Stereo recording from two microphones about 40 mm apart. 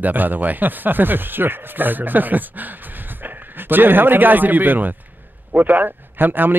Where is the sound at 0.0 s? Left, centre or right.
Right.